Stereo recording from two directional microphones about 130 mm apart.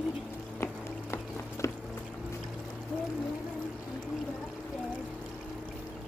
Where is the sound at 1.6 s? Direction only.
20° left (ahead or behind).